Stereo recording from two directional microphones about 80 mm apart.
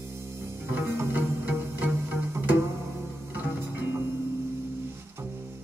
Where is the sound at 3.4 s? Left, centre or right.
Right.